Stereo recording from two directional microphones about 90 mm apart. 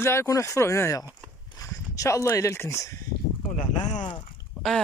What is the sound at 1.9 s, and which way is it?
Speech, 35° left (ahead or behind).